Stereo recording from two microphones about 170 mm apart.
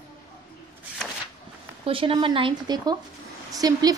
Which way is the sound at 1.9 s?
30° right (ahead or behind).